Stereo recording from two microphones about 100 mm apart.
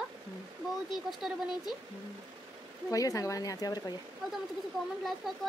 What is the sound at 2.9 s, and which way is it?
Speech, 35° left (ahead or behind).